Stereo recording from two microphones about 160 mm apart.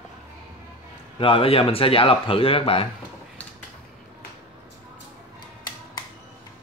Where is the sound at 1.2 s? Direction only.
35° left (ahead or behind).